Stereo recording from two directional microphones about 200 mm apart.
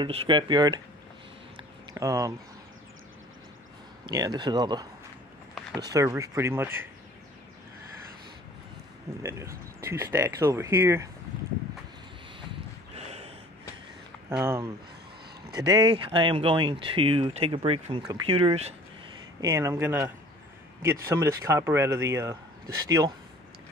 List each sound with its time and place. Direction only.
0.0 s speech: 25° right (ahead or behind)
1.6 s a sound: 15° right (ahead or behind)
4.0 s speech: 20° right (ahead or behind)
5.9 s speech: 15° right (ahead or behind)
9.2 s speech: 15° right (ahead or behind)
12.9 s gasp: 30° right (ahead or behind)
14.3 s speech: 15° right (ahead or behind)
19.4 s speech: 15° right (ahead or behind)